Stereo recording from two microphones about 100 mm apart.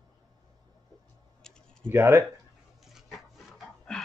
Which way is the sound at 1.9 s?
25° right (ahead or behind).